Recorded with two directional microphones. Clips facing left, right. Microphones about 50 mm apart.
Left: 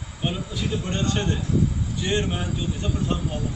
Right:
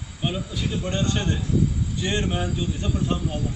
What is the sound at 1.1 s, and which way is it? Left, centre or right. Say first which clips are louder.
A man's voice: even; centre.